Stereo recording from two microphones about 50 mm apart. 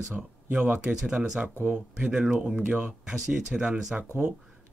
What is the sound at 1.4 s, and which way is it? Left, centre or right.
Speech, right.